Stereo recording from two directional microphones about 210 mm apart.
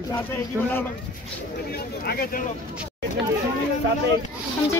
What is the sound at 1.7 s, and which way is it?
Speech, 45° left (ahead or behind).